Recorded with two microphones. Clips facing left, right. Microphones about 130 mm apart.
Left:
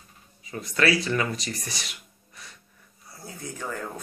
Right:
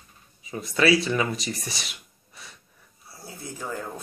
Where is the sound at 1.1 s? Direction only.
20° right (ahead or behind).